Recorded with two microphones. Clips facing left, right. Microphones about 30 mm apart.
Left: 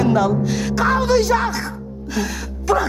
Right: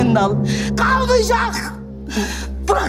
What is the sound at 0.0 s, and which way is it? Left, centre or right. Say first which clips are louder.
Speech: right 1 dB; centre.